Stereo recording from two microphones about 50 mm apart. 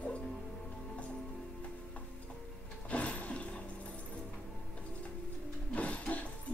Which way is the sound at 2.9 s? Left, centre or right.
Left.